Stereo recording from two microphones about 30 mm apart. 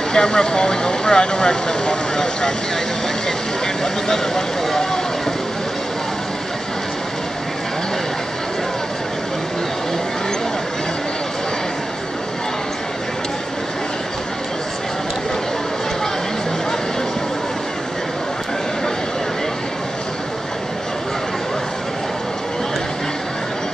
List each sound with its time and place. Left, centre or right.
0.1 s speech: left